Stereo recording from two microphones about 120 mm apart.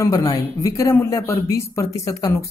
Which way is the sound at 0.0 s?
30° left (ahead or behind).